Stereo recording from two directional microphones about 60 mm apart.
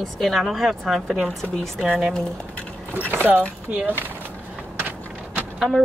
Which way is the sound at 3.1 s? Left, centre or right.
Right.